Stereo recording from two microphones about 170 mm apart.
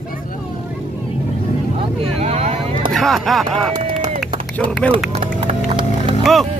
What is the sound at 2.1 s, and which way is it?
Vehicle, 40° right (ahead or behind).